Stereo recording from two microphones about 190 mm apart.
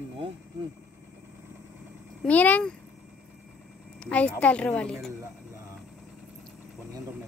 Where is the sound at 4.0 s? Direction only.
5° left (ahead or behind).